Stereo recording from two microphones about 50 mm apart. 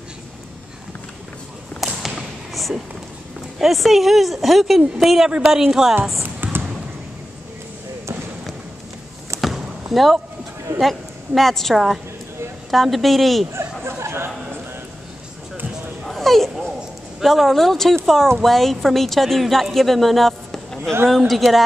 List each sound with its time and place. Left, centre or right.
1.8 s thump: centre
3.5 s a woman's voice: centre
6.2 s basketball bounce: right
9.4 s chop: centre
10.8 s a woman's voice: centre
13.5 s chatter: right
16.0 s dog: centre
17.2 s a man's voice: centre